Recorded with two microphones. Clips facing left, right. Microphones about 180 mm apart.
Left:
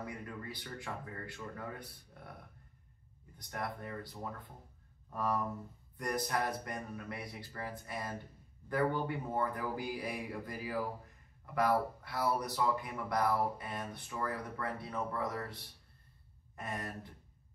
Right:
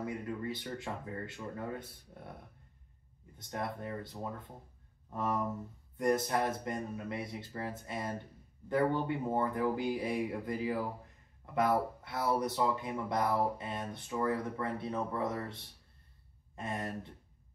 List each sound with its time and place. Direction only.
0.0 s speech: 25° right (ahead or behind)
3.3 s speech: 25° right (ahead or behind)
16.5 s speech: 25° right (ahead or behind)